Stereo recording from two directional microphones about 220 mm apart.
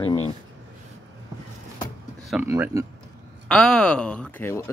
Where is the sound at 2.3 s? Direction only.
10° right (ahead or behind).